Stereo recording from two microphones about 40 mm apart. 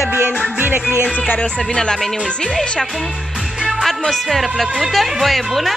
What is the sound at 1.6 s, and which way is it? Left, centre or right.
Speech, centre.